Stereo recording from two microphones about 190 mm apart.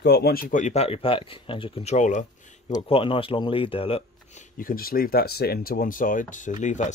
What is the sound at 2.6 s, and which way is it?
Speech, 25° left (ahead or behind).